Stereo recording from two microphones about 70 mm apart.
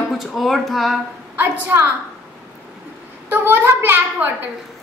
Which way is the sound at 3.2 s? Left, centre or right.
Right.